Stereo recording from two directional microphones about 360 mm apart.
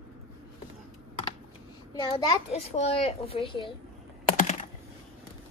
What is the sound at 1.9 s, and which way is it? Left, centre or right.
A child's voice, centre.